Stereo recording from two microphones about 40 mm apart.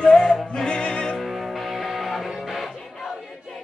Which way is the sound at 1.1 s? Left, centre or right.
Centre.